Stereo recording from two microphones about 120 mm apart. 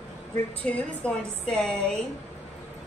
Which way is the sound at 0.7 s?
10° left (ahead or behind).